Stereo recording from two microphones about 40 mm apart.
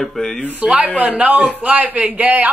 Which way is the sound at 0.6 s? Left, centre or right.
Right.